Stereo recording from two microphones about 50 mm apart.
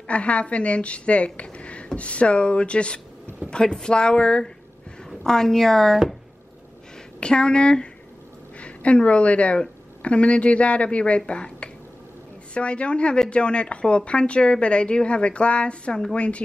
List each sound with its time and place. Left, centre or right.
0.0 s a woman's voice: left; by 5.9 s centre
7.2 s a woman's voice: centre